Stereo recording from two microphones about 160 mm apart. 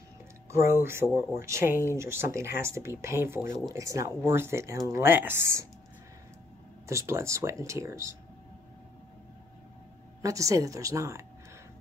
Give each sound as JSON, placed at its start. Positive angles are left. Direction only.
{"t": 0.5, "sound": "speech", "side_deg": -15}
{"t": 6.9, "sound": "speech", "side_deg": -15}
{"t": 10.2, "sound": "speech", "side_deg": -20}